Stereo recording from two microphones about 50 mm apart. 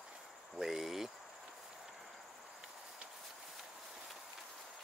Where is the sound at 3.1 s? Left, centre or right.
Centre.